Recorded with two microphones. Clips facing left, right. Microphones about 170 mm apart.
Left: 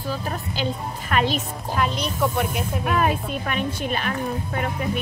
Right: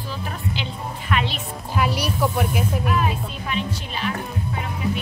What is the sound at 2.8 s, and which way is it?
Speech, 50° left (ahead or behind).